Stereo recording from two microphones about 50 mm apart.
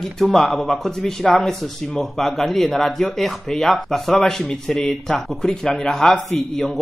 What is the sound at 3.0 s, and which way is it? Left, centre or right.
A man's voice, centre.